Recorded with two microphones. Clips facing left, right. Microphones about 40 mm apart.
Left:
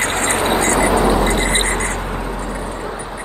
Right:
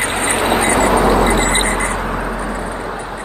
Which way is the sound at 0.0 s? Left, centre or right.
Centre.